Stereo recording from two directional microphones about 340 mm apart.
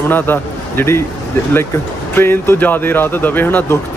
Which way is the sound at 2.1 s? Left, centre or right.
Centre.